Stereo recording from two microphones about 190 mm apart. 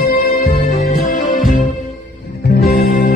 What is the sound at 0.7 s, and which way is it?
Music, 40° left (ahead or behind).